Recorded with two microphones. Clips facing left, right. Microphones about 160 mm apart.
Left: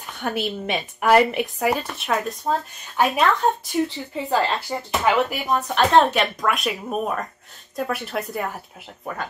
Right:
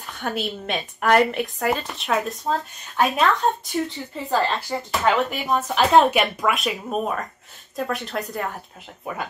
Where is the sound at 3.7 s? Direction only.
10° left (ahead or behind); by 9.3 s 5° right (ahead or behind).